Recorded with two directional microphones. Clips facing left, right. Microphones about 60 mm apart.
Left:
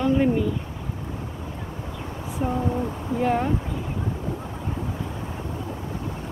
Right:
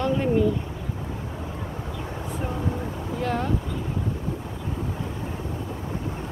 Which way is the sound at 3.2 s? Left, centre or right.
Centre.